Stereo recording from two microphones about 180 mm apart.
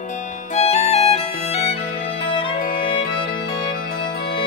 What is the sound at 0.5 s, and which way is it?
Music, 35° left (ahead or behind).